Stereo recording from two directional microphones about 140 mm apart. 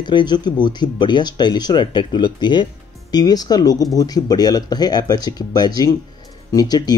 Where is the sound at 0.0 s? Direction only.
35° left (ahead or behind).